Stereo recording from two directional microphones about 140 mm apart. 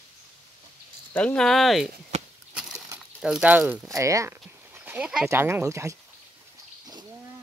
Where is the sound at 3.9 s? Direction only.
25° right (ahead or behind); by 5.3 s 5° right (ahead or behind).